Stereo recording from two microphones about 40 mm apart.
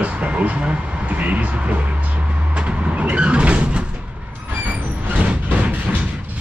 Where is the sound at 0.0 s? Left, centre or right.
Right.